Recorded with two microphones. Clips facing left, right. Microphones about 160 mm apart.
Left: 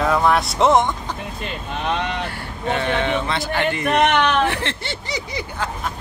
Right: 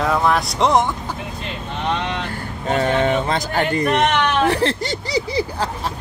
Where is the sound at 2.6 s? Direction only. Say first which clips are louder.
Right 3 dB; 40° right (ahead or behind).